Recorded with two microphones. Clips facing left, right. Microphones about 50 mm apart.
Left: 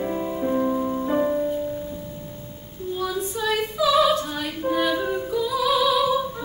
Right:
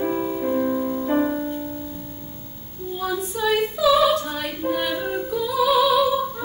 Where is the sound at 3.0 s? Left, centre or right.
Centre.